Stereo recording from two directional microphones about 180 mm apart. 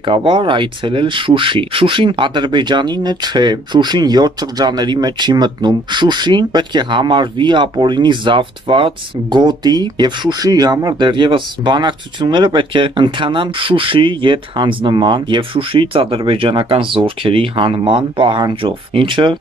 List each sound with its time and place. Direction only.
0.0 s speech: 25° right (ahead or behind)